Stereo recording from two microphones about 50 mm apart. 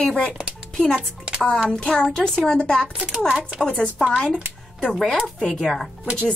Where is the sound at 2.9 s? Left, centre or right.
Centre.